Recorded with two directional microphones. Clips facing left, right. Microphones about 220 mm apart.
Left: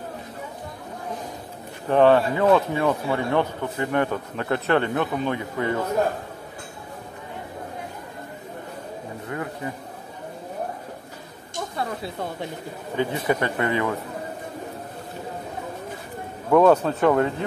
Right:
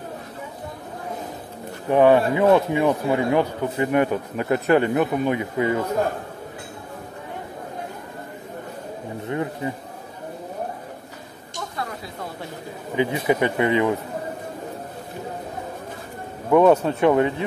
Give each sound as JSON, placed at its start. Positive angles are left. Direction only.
{"t": 1.9, "sound": "speech", "side_deg": -10}
{"t": 9.3, "sound": "speech", "side_deg": -20}
{"t": 12.9, "sound": "speech", "side_deg": -15}
{"t": 16.4, "sound": "speech", "side_deg": -5}